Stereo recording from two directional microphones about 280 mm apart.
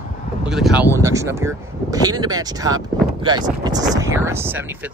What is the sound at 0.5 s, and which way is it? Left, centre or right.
Speech, centre.